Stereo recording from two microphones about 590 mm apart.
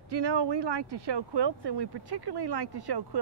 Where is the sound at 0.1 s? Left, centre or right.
Right.